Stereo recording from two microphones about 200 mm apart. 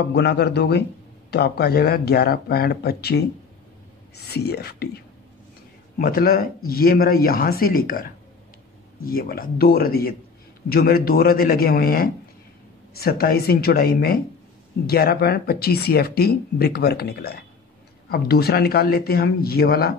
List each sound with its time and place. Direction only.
0.1 s speech: 55° left (ahead or behind)
4.3 s speech: 50° left (ahead or behind)